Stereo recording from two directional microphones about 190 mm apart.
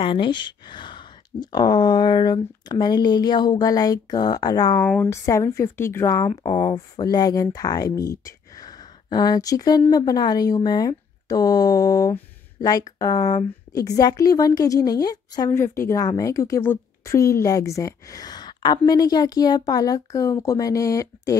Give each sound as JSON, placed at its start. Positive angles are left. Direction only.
{"t": 0.0, "sound": "speech", "side_deg": 25}
{"t": 4.8, "sound": "speech", "side_deg": 10}